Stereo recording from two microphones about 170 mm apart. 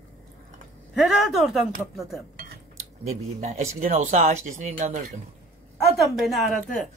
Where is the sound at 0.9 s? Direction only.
Centre (ahead or behind).